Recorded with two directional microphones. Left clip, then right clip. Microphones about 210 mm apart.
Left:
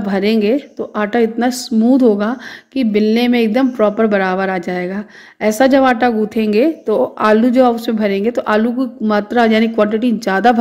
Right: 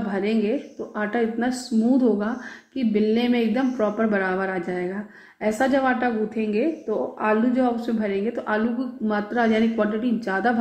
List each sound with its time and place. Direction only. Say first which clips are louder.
0.1 s a woman's voice: left 10 dB; 40° left (ahead or behind)